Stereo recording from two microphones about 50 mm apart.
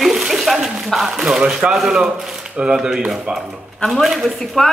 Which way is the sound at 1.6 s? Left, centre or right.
Right.